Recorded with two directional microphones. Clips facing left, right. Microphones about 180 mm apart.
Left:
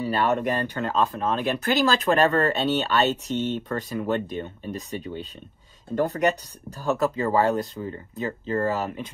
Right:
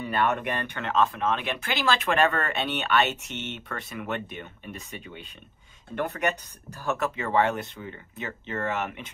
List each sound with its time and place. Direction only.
0.0 s speech: 35° left (ahead or behind)